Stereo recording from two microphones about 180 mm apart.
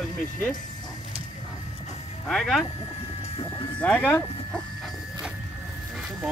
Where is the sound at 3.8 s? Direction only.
10° left (ahead or behind).